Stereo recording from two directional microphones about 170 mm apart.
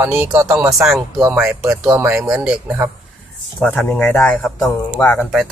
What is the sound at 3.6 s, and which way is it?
Speech, 5° left (ahead or behind).